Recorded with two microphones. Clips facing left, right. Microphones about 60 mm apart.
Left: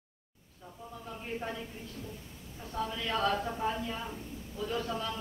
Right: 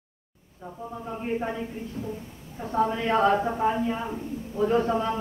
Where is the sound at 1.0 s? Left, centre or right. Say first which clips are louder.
Right 9 dB; right.